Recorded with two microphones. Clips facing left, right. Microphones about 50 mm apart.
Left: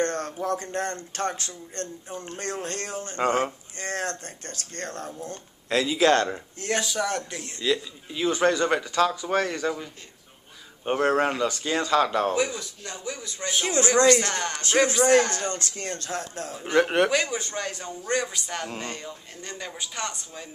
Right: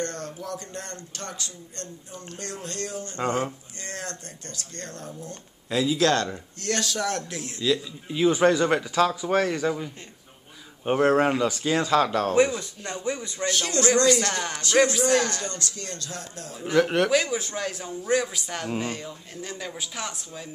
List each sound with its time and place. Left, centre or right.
0.0 s a man's voice: left
5.9 s a man's voice: left; by 9.8 s centre
10.9 s a man's voice: centre
12.4 s speech: right
13.5 s a man's voice: centre
14.3 s speech: centre
15.0 s a man's voice: left
16.7 s speech: centre
17.1 s a man's voice: centre